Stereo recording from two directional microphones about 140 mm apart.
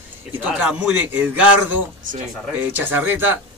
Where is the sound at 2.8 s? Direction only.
15° right (ahead or behind).